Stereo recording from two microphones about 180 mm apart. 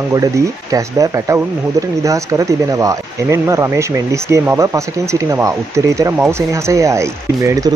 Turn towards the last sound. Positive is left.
turn(degrees=-20)  # may be behind; listen again after turning